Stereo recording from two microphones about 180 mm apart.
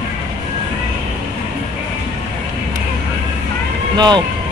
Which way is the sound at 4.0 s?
25° right (ahead or behind).